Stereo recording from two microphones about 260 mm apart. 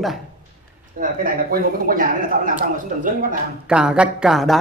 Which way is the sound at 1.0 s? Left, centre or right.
Right.